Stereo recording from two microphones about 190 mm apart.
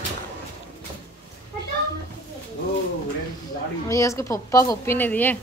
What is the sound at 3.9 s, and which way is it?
A child's voice, 15° left (ahead or behind).